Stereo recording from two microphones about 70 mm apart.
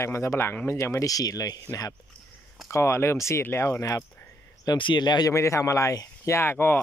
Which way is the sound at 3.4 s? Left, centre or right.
Left.